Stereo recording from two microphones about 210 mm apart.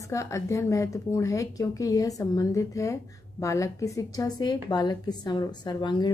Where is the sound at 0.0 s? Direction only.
15° left (ahead or behind).